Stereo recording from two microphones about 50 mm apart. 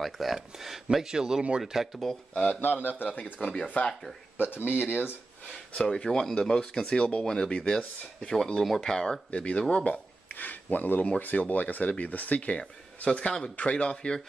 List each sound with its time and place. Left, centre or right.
0.0 s speech: centre
0.9 s a man's voice: centre
2.3 s speech: centre
2.6 s speech: left
4.5 s speech: left
5.8 s speech: centre
9.3 s speech: left
10.3 s speech: left; by 14.2 s centre